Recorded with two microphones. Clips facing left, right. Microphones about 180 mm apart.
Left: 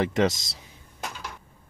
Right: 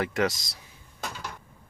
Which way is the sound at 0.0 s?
25° left (ahead or behind).